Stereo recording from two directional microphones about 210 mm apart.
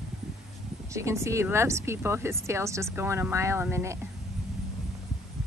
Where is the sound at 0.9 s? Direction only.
15° right (ahead or behind).